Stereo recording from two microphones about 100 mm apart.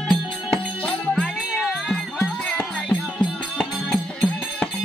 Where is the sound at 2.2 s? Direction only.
20° left (ahead or behind).